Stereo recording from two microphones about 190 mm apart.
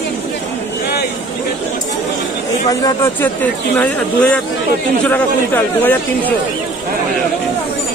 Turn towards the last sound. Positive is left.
turn(degrees=10)  # may be behind; listen again after turning